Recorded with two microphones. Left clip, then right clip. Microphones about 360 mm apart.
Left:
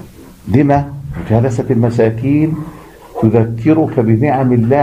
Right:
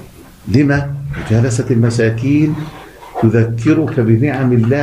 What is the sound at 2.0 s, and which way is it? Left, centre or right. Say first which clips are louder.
Speech: left 3 dB; centre.